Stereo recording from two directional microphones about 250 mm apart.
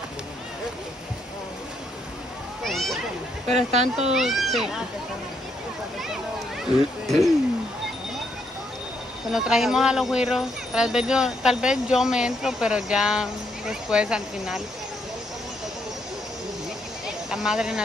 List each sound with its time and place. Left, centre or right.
2.6 s a sound: centre
3.4 s speech: right
4.1 s speech: centre
6.6 s speech: centre
9.3 s speech: centre
17.3 s speech: centre